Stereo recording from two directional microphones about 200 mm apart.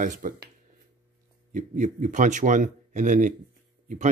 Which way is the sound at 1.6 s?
40° right (ahead or behind).